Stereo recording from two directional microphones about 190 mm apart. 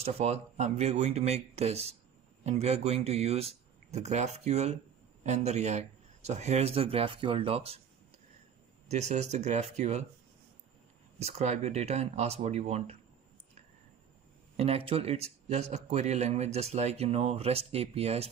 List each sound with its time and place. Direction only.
0.0 s a man's voice: 35° right (ahead or behind)
8.9 s a man's voice: 35° right (ahead or behind)
11.1 s a man's voice: 35° right (ahead or behind)
14.6 s a man's voice: 30° right (ahead or behind)